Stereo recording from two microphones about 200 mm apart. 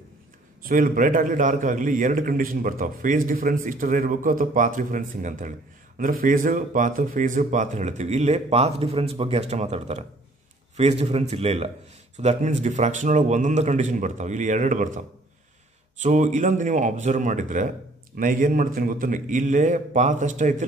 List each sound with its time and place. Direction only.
0.6 s a man's voice: 45° right (ahead or behind)